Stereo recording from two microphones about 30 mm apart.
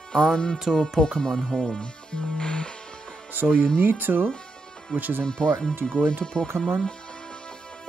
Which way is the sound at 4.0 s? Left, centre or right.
Right.